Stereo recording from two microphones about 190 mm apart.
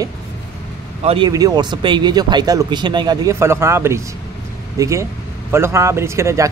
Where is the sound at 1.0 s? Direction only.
25° right (ahead or behind).